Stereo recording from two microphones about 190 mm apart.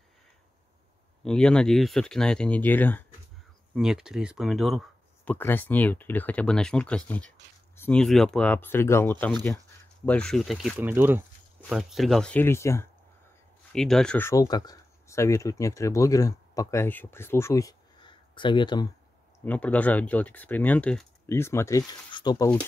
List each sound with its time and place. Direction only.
1.2 s speech: 5° left (ahead or behind)
3.7 s speech: 5° right (ahead or behind)
5.2 s speech: 10° left (ahead or behind)
10.8 s speech: 10° right (ahead or behind)
11.7 s speech: centre (ahead or behind)
13.7 s speech: 5° left (ahead or behind); by 18.9 s 25° left (ahead or behind)
19.4 s speech: 10° left (ahead or behind)